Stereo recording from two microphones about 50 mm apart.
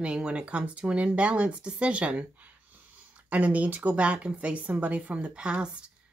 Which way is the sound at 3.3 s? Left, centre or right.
Right.